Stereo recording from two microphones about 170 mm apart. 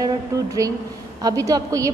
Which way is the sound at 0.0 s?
20° right (ahead or behind).